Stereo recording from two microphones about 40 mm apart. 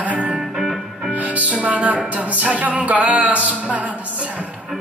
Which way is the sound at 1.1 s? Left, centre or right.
Right.